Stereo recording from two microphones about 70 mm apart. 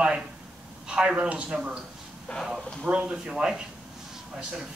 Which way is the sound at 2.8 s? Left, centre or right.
Centre.